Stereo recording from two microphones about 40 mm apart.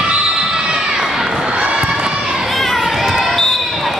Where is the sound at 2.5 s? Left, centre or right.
Centre.